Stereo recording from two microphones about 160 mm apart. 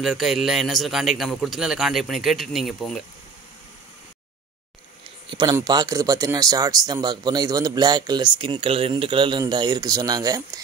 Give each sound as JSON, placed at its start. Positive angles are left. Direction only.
{"t": 0.0, "sound": "a man's voice", "side_deg": 0}
{"t": 5.3, "sound": "speech", "side_deg": -25}